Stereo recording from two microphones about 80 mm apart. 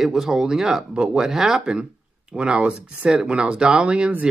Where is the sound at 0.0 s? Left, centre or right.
Centre.